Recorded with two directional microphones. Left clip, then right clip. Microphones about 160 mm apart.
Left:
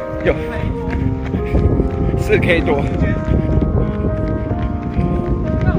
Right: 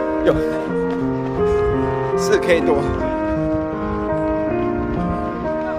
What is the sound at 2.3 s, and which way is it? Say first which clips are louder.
Speech: left 2 dB; 30° right (ahead or behind).